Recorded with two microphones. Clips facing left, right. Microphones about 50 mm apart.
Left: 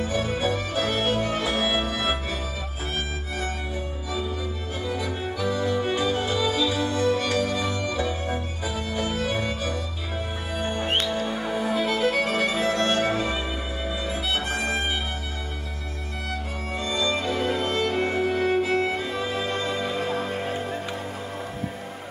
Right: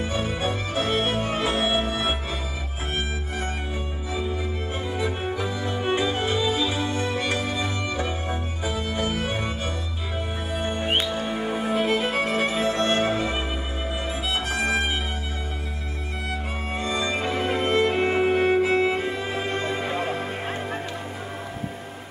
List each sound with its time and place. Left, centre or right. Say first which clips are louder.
0.0 s music: left 1 dB; right
4.1 s music: right 2 dB; right
16.7 s music: even; right